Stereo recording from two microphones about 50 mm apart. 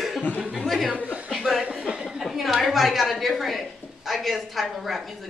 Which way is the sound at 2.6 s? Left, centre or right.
Centre.